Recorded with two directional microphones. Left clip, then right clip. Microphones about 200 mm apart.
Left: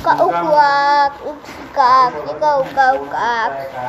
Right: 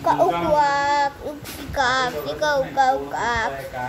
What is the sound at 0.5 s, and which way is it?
Child singing, 20° right (ahead or behind).